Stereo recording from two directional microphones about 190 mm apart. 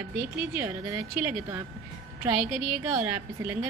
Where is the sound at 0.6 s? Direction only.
15° right (ahead or behind).